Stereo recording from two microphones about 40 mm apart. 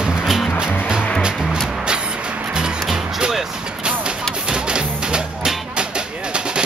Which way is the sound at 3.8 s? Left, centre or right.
Right.